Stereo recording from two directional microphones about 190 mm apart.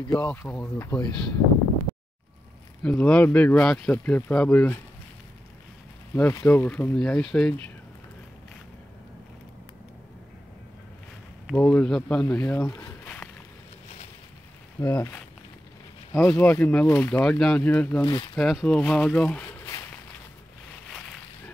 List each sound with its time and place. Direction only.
0.1 s speech: 10° left (ahead or behind)
2.8 s speech: 5° left (ahead or behind)
6.1 s speech: 5° left (ahead or behind)
11.5 s speech: 5° left (ahead or behind)
13.0 s a sound: 5° left (ahead or behind)
14.8 s speech: 10° left (ahead or behind)
18.0 s speech: 25° left (ahead or behind)
18.3 s speech: centre (ahead or behind)